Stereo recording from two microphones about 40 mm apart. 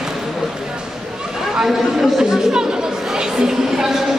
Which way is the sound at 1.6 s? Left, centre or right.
Centre.